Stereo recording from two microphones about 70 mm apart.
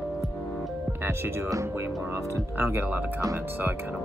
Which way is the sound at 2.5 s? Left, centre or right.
Right.